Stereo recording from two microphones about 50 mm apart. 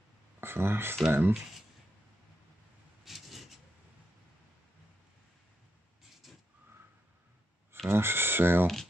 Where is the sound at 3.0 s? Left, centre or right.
Centre.